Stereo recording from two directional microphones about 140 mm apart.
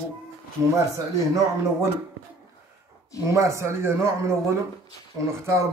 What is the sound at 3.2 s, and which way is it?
Speech, 20° right (ahead or behind).